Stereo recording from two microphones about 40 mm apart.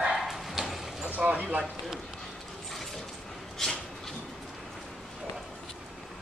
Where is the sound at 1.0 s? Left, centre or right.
Right.